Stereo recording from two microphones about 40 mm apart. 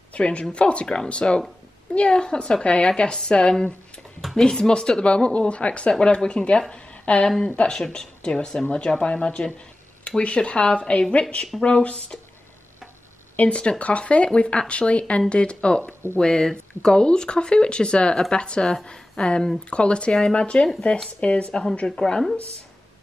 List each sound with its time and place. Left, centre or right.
0.1 s speech: left
5.0 s speech: left
6.7 s a sound: left
7.2 s speech: centre
10.0 s speech: left
13.4 s speech: left
21.5 s speech: left